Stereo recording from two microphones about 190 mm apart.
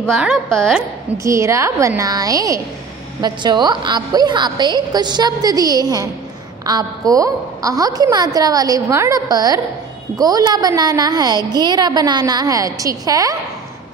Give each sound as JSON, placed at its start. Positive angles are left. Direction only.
{"t": 0.1, "sound": "a woman's voice", "side_deg": -5}
{"t": 1.1, "sound": "a woman's voice", "side_deg": -15}